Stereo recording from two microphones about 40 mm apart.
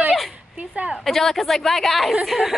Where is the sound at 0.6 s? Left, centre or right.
Right.